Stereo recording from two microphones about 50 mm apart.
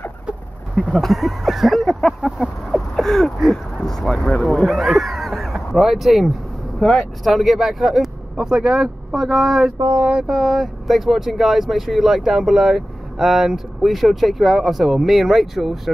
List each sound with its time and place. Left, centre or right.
0.9 s speech: centre
2.2 s speech: centre
2.7 s speech: centre
4.3 s speech: left
4.6 s speech: centre
6.8 s speech: centre
7.2 s speech: centre
8.4 s speech: centre